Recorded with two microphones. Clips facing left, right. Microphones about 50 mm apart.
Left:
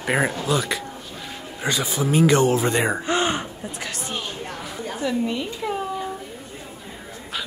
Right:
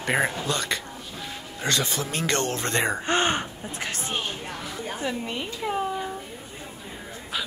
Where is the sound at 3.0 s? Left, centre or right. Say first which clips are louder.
Left 1 dB; right.